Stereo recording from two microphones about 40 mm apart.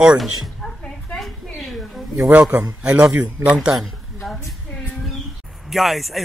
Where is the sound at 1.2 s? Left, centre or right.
Centre.